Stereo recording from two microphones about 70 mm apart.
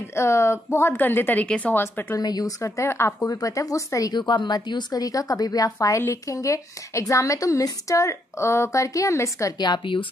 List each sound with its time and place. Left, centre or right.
0.1 s a woman's voice: left; by 1.8 s centre
1.8 s a woman's voice: left
2.1 s speech: left
2.6 s a woman's voice: left
3.3 s speech: left
4.1 s speech: left